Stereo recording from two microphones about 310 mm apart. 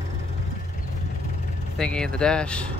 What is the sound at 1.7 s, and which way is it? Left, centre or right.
Speech, centre.